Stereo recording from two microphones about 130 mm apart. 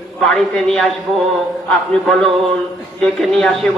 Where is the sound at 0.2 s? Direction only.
5° left (ahead or behind).